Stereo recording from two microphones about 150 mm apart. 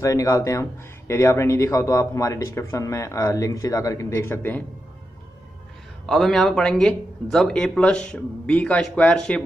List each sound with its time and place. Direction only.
0.0 s a man's voice: 20° left (ahead or behind)
6.0 s speech: 5° left (ahead or behind)